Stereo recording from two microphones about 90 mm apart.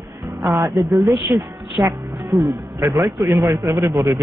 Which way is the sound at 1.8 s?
30° right (ahead or behind).